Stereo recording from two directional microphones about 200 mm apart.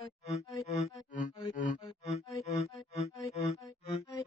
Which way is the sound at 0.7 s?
35° left (ahead or behind).